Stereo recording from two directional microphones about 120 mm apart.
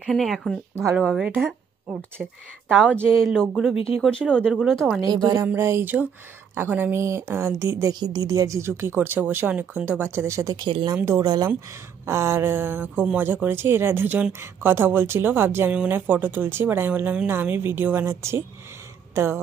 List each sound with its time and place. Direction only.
0.0 s speech: centre (ahead or behind)
3.2 s speech: centre (ahead or behind)
5.0 s speech: 35° right (ahead or behind)
5.5 s speech: 20° right (ahead or behind)
7.9 s speech: 35° right (ahead or behind)
19.1 s a sound: 20° right (ahead or behind)